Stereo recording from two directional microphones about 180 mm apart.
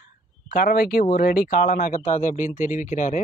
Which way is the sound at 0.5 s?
55° left (ahead or behind).